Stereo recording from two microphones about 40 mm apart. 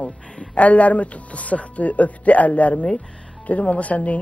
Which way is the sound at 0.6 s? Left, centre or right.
Left.